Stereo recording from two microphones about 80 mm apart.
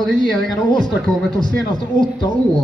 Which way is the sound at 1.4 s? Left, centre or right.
Left.